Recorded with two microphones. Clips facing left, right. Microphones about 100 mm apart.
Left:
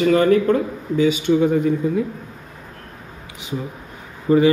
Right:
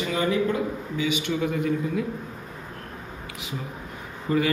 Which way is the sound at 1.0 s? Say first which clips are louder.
Left 10 dB; 30° left (ahead or behind).